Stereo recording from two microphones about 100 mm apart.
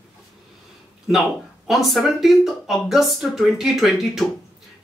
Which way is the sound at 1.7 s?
Centre (ahead or behind).